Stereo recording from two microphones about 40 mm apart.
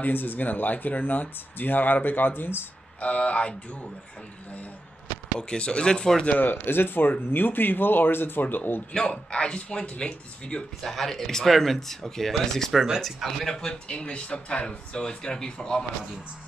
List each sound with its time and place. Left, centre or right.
0.0 s speech: left
3.0 s speech: left
5.4 s speech: left
6.4 s speech: left
8.4 s speech: left
8.9 s speech: left
10.8 s speech: centre
13.7 s speech: left